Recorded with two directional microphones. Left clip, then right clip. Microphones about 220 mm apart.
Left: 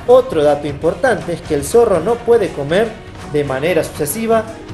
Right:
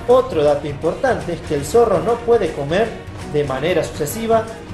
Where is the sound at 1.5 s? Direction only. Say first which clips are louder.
Left 4 dB; 30° left (ahead or behind).